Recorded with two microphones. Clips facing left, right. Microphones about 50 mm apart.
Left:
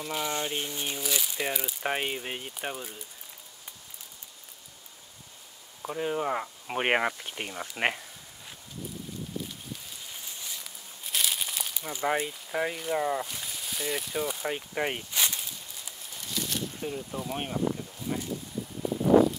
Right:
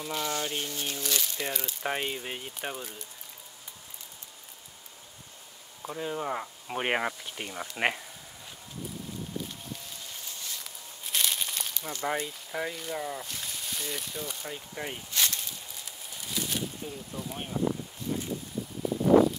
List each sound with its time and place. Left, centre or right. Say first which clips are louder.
0.0 s speech: left 1 dB; centre
5.8 s speech: left 3 dB; centre
7.5 s speech: even; centre
10.2 s a sound: even; centre
11.1 s crumpling: even; centre
12.9 s speech: left 10 dB; left
13.2 s speech: left 2 dB; centre
14.7 s speech: left 6 dB; left
15.1 s a sound: even; centre
16.8 s speech: left 4 dB; left